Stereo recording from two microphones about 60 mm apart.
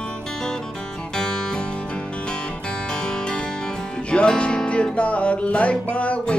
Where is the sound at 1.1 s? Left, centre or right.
Centre.